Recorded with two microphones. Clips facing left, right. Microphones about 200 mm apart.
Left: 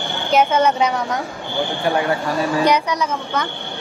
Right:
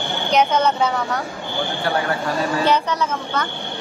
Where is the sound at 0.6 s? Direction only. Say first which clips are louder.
Left 2 dB; 15° left (ahead or behind).